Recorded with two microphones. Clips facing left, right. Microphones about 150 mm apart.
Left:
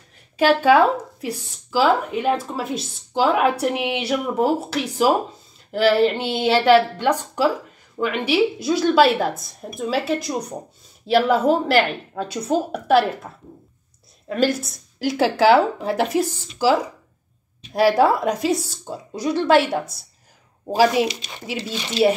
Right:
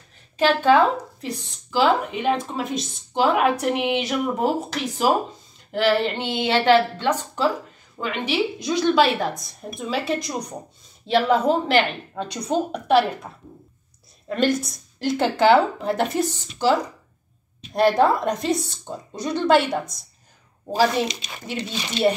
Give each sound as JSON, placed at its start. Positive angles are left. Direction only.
{"t": 0.4, "sound": "a woman's voice", "side_deg": 10}
{"t": 14.3, "sound": "a woman's voice", "side_deg": 5}